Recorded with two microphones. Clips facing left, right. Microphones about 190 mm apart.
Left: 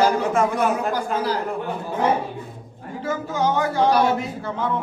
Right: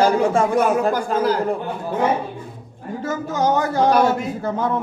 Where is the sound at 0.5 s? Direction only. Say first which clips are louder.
Right 4 dB; 45° right (ahead or behind).